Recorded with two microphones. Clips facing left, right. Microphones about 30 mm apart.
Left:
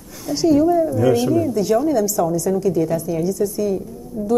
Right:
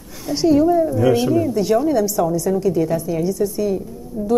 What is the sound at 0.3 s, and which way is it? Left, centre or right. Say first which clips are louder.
A woman's voice: even; right.